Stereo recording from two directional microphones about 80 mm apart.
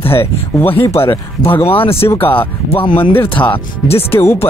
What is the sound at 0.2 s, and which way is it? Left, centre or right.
Speech, left.